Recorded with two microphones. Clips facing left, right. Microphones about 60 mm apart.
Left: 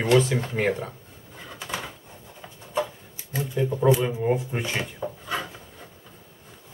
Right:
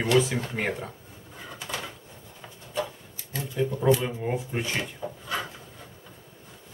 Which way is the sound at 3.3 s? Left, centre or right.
Centre.